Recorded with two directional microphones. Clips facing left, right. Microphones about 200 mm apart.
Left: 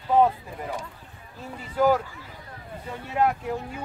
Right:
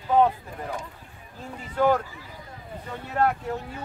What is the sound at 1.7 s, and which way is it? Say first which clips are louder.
Speech: left 1 dB; 5° left (ahead or behind).